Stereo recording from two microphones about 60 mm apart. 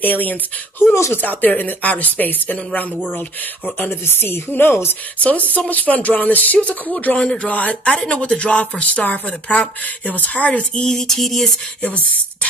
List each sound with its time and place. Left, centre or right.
0.0 s speech: left
5.5 s speech: left; by 11.5 s centre